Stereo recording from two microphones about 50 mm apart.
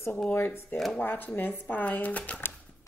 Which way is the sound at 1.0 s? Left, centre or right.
Left.